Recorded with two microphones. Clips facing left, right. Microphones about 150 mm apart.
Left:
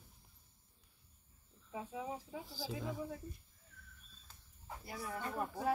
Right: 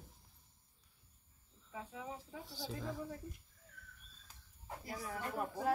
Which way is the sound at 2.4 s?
Centre (ahead or behind).